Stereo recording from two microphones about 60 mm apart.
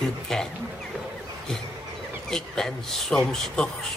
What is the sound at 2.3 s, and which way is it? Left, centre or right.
A man's voice, centre.